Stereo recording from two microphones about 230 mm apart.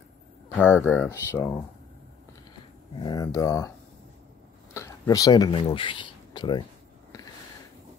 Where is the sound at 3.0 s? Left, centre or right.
Centre.